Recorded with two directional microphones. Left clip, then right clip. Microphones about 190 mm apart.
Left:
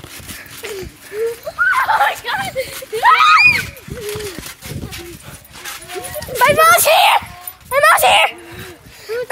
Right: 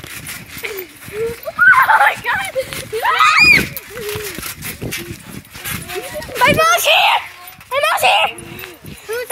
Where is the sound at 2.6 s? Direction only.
55° left (ahead or behind).